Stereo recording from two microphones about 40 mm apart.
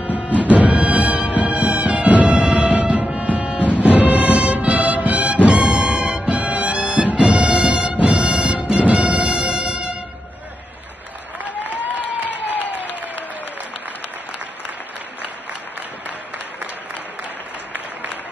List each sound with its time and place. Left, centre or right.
0.6 s music: right
11.9 s applause: left